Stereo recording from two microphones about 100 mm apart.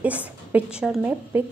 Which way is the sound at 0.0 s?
15° right (ahead or behind).